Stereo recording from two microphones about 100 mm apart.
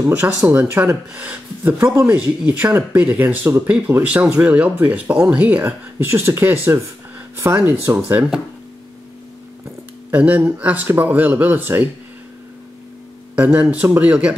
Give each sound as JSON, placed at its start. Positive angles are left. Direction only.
{"t": 0.5, "sound": "speech", "side_deg": -20}
{"t": 10.1, "sound": "speech", "side_deg": -15}
{"t": 13.4, "sound": "speech", "side_deg": -15}